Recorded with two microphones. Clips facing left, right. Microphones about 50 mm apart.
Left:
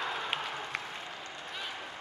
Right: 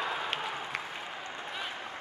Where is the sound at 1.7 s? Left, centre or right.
Right.